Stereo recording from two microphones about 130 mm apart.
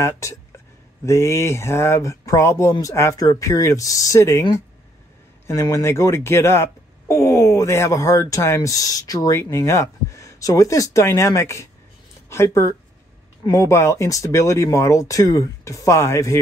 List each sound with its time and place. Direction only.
0.2 s speech: 25° left (ahead or behind)